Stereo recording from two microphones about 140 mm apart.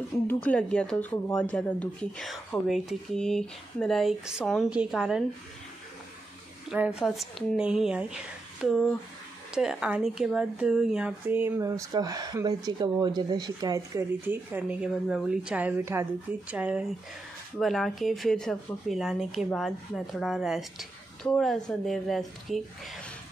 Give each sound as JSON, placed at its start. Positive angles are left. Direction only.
{"t": 0.3, "sound": "a woman's voice", "side_deg": 10}
{"t": 6.7, "sound": "speech", "side_deg": -5}
{"t": 14.2, "sound": "speech", "side_deg": -15}